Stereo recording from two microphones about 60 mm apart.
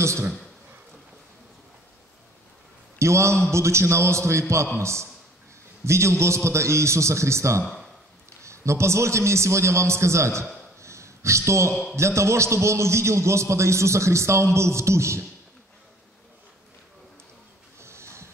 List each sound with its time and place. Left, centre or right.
0.0 s a man's voice: right
3.0 s a man's voice: right
10.8 s a sound: right
11.9 s a man's voice: right
17.7 s snort: right